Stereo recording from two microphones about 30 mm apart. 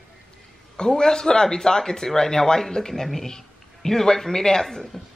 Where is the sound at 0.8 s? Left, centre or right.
Left.